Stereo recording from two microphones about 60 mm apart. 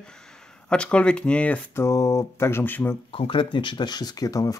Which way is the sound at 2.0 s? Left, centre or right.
Left.